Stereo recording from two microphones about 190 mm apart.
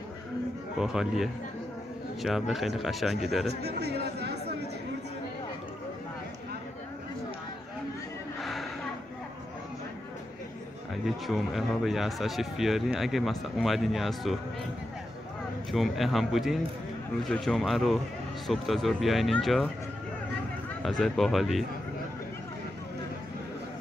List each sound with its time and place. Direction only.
0.7 s a man's voice: 5° right (ahead or behind)
3.4 s speech: 60° right (ahead or behind)
8.4 s a sound: centre (ahead or behind)
11.1 s a man's voice: centre (ahead or behind)
15.7 s a man's voice: centre (ahead or behind)
20.8 s a man's voice: centre (ahead or behind)